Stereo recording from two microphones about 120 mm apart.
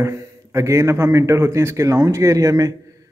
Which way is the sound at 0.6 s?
25° right (ahead or behind).